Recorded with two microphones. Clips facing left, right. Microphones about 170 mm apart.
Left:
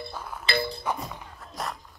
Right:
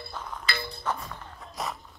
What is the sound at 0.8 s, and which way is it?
Music, 10° left (ahead or behind).